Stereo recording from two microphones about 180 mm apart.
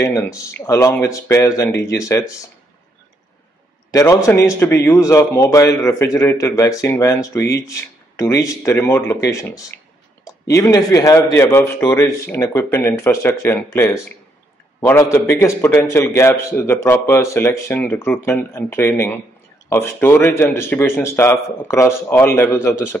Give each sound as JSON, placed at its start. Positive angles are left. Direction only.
{"t": 0.0, "sound": "speech", "side_deg": 15}
{"t": 3.9, "sound": "speech", "side_deg": 15}